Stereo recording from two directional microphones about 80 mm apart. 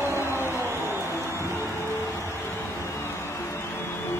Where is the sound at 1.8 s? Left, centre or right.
Left.